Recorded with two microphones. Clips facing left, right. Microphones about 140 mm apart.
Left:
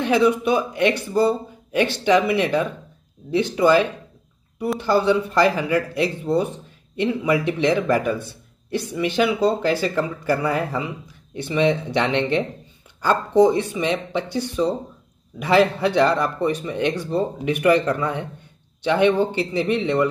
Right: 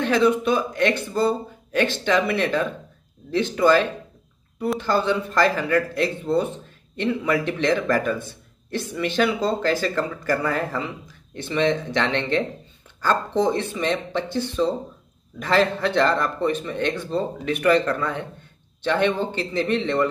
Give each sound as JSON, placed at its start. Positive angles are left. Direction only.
{"t": 0.0, "sound": "speech", "side_deg": 15}